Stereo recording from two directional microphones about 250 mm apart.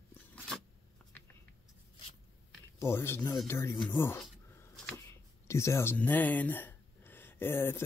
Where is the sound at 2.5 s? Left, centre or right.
Centre.